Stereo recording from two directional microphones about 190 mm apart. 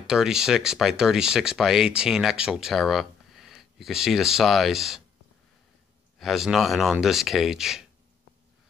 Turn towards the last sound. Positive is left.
turn(degrees=0)  # may be behind; listen again after turning